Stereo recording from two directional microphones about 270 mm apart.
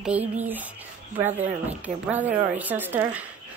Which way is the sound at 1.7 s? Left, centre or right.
Centre.